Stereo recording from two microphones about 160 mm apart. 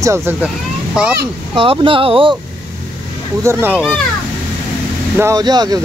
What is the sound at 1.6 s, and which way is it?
Speech, 35° right (ahead or behind).